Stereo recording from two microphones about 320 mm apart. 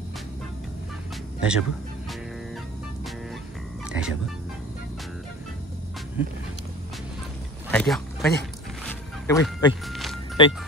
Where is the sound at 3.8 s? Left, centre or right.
Centre.